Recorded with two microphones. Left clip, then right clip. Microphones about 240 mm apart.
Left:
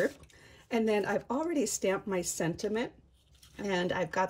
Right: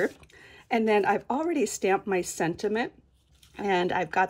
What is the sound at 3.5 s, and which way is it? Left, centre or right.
Speech, centre.